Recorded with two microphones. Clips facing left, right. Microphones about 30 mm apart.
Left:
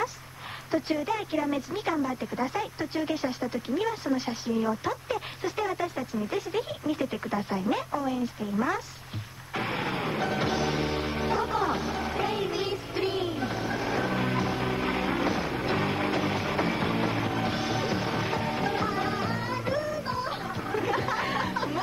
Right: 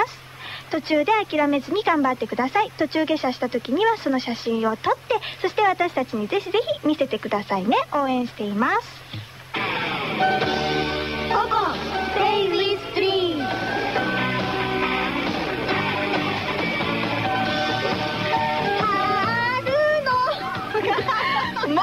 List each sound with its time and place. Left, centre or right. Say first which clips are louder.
0.7 s speech: right 8 dB; right
9.6 s music: right 5 dB; right